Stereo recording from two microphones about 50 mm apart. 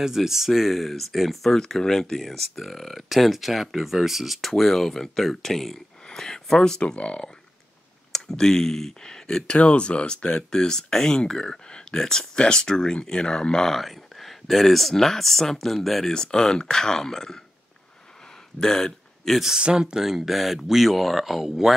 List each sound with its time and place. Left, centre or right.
0.0 s speech: centre
6.0 s a sound: centre
6.8 s speech: left
18.6 s speech: centre
19.6 s speech: centre